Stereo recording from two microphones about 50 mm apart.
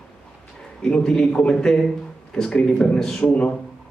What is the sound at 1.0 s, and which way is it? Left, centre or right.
Speech, centre.